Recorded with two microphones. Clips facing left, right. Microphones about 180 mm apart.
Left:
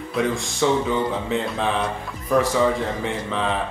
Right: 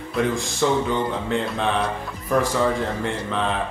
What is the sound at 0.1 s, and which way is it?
A man's voice, centre (ahead or behind).